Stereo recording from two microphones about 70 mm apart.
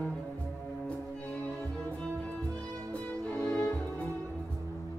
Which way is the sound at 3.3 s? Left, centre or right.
Centre.